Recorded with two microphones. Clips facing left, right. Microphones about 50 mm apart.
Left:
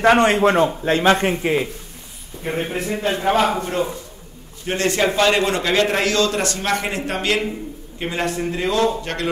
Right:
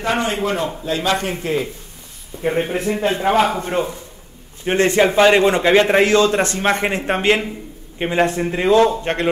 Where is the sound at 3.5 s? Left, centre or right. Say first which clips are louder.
Right 1 dB; right.